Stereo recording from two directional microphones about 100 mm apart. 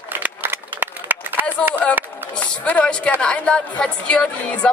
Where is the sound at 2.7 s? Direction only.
15° left (ahead or behind).